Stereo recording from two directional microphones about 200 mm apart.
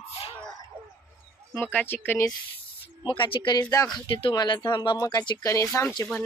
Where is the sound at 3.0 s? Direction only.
25° left (ahead or behind).